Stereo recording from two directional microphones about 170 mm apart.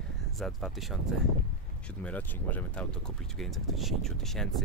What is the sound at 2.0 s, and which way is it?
Speech, 10° left (ahead or behind).